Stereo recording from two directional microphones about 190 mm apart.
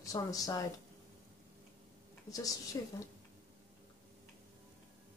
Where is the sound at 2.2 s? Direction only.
20° left (ahead or behind).